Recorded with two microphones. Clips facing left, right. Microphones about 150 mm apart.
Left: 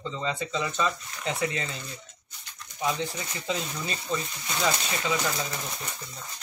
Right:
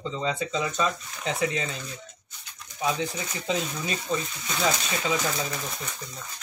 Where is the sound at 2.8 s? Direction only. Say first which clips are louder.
Right 1 dB; 15° right (ahead or behind).